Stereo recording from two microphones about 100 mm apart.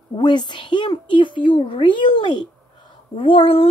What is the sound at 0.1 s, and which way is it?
A woman's voice, 50° left (ahead or behind).